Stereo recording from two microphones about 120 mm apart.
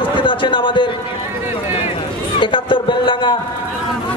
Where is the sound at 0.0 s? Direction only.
45° left (ahead or behind).